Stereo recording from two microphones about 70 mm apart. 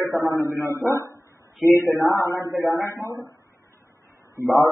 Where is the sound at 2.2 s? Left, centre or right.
Left.